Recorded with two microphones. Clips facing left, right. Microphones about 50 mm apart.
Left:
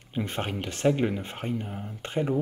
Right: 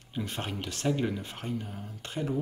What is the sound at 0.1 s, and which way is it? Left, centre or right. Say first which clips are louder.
Speech: left 4 dB; left.